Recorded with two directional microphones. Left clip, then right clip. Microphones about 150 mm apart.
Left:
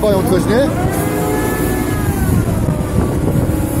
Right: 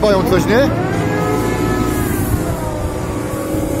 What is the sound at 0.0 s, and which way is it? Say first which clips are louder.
Speech: right 1 dB; 25° left (ahead or behind).